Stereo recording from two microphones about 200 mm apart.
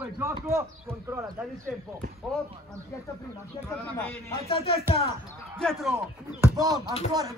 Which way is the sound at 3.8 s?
5° left (ahead or behind).